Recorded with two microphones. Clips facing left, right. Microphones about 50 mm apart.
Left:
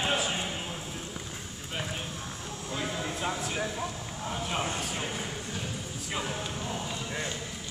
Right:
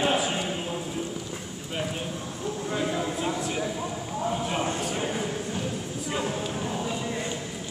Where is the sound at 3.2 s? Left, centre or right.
Centre.